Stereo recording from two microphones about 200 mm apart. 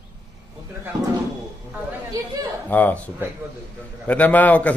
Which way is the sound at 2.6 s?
10° left (ahead or behind).